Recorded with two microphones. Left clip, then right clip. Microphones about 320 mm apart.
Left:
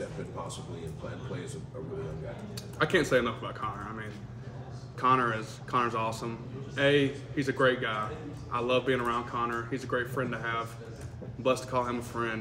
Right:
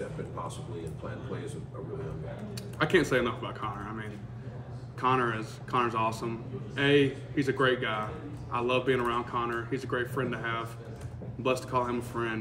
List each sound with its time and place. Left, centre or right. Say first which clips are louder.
2.8 s a man's voice: even; centre